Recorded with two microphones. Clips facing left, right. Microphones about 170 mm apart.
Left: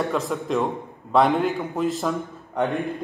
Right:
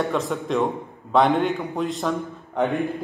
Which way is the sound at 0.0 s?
Centre (ahead or behind).